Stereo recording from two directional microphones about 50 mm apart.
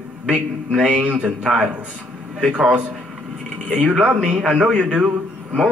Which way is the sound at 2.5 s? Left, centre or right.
Right.